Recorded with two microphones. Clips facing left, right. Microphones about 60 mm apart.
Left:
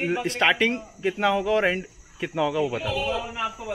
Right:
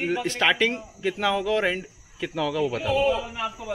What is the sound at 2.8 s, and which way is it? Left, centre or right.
Speech, centre.